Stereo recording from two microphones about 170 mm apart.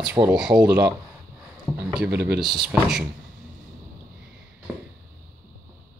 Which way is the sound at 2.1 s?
75° right (ahead or behind).